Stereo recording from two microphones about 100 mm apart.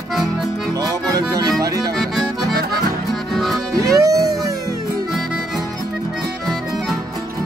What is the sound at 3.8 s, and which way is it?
Music, 35° right (ahead or behind).